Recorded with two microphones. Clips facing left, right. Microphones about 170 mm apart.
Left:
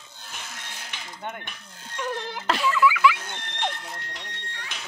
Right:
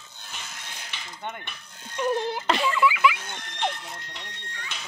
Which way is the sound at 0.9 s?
5° left (ahead or behind).